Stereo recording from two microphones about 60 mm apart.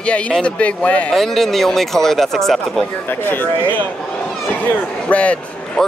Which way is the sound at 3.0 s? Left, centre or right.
Left.